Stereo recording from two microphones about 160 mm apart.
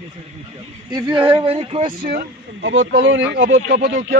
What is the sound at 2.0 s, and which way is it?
Speech, 60° right (ahead or behind).